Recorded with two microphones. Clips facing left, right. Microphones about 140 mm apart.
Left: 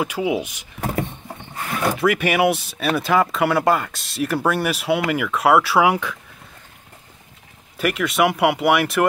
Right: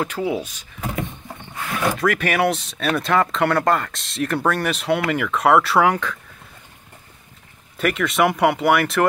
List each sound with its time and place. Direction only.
0.0 s speech: 10° left (ahead or behind)
0.7 s a sound: 40° left (ahead or behind)
1.8 s speech: 5° left (ahead or behind)
7.7 s speech: 5° left (ahead or behind)